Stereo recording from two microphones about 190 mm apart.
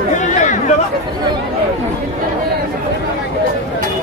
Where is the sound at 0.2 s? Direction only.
40° left (ahead or behind).